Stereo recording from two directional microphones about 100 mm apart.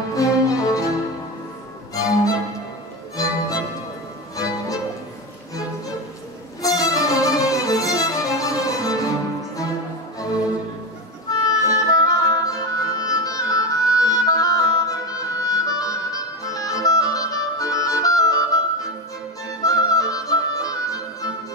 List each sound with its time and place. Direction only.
0.1 s music: 35° left (ahead or behind)
2.0 s violin: 35° left (ahead or behind)
3.2 s music: 35° left (ahead or behind)
6.6 s music: 35° left (ahead or behind)
11.4 s music: 35° left (ahead or behind)